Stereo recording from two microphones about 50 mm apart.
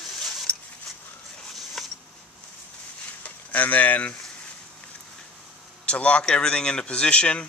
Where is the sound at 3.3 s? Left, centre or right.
Left.